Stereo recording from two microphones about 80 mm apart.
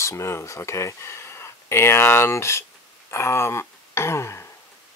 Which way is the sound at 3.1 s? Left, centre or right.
Left.